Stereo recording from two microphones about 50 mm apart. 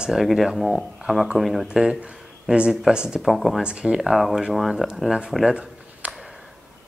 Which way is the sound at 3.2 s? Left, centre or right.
Centre.